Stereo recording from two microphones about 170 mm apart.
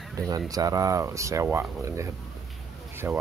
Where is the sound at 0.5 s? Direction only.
20° right (ahead or behind).